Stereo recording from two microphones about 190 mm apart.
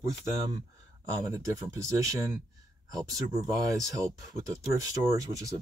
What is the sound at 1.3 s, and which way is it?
Speech, 15° right (ahead or behind).